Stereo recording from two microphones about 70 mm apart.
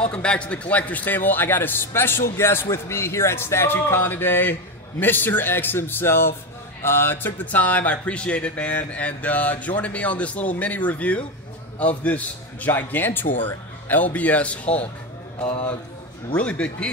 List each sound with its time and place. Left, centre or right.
0.1 s a man's voice: centre
16.3 s a man's voice: centre